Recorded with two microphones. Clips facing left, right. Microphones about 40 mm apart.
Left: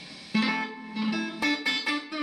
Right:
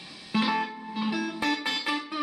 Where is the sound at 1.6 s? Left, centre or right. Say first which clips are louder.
Left 1 dB; right.